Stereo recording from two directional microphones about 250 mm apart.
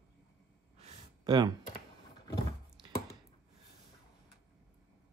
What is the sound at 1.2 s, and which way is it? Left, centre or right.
Speech, centre.